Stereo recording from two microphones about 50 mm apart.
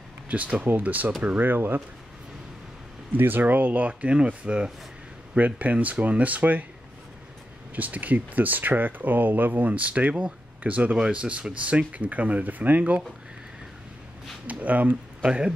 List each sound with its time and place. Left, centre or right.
0.3 s speech: right
3.2 s speech: right
5.3 s speech: right
7.7 s speech: right
14.4 s speech: right
15.2 s speech: right